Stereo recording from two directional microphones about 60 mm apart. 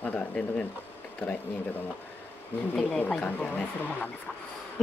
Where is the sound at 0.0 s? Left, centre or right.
Left.